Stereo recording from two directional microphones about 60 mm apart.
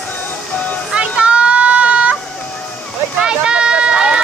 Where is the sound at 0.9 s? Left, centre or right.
Centre.